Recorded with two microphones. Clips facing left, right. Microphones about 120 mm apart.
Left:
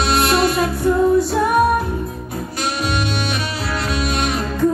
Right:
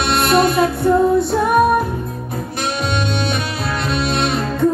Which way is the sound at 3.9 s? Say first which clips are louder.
Right 3 dB; 65° right (ahead or behind).